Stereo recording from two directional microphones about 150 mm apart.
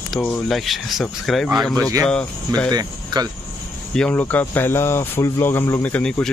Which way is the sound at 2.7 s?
25° right (ahead or behind).